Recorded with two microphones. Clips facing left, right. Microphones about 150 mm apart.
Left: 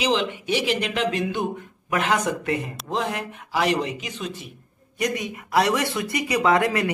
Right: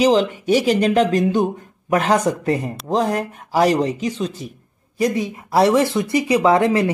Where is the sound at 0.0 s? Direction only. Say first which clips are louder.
Right 8 dB; 40° right (ahead or behind).